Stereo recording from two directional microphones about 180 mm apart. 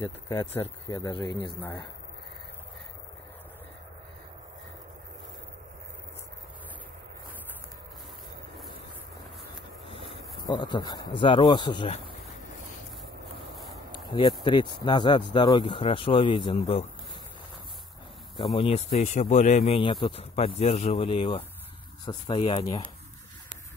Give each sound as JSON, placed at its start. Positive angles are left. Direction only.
{"t": 0.0, "sound": "speech", "side_deg": 20}
{"t": 10.4, "sound": "speech", "side_deg": 25}
{"t": 13.9, "sound": "a sound", "side_deg": 25}
{"t": 14.4, "sound": "speech", "side_deg": 25}
{"t": 18.4, "sound": "speech", "side_deg": 25}